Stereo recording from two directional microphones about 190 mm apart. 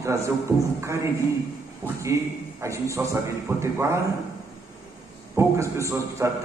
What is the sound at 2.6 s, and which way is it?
A man's voice, 15° right (ahead or behind).